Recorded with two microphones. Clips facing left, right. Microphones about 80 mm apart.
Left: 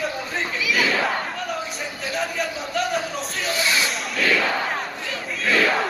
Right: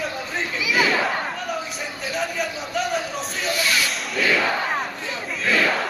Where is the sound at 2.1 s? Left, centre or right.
Centre.